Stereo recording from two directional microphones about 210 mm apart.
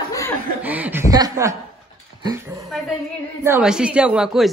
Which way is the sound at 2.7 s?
Centre (ahead or behind).